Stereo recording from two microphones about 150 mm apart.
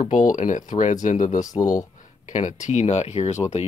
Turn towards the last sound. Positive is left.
turn(degrees=50)  # may be behind; listen again after turning